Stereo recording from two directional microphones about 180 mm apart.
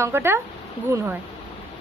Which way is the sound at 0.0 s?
15° right (ahead or behind).